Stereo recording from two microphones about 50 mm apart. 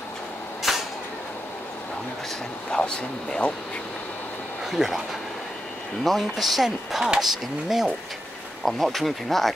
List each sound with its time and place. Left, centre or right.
0.7 s vehicle: centre
2.7 s speech: centre
4.6 s speech: centre
6.0 s speech: centre